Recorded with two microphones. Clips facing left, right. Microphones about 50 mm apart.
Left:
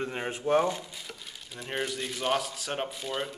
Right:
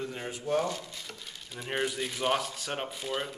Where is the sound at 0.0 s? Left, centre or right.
Left.